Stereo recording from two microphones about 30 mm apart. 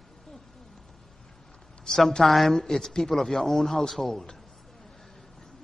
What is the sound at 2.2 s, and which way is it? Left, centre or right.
Speech, centre.